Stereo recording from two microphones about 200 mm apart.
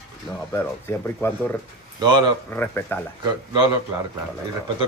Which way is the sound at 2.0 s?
20° right (ahead or behind).